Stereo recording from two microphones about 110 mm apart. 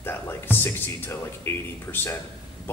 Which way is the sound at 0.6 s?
20° left (ahead or behind).